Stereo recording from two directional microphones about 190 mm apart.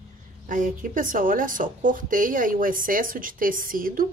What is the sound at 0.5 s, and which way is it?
Speech, 45° right (ahead or behind).